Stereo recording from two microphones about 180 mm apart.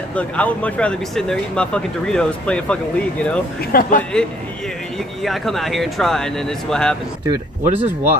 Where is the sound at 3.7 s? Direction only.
50° left (ahead or behind).